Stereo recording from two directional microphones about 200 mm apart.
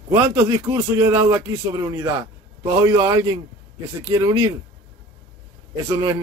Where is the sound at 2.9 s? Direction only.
20° right (ahead or behind).